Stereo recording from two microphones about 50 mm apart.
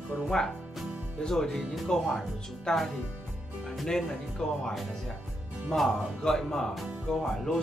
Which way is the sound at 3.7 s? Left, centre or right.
Centre.